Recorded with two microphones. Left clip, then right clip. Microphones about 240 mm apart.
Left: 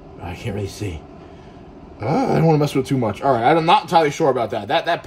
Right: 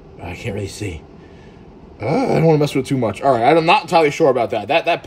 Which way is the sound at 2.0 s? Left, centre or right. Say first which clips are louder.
Right 2 dB; centre.